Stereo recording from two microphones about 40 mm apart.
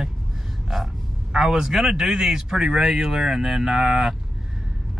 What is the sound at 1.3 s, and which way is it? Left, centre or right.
Speech, centre.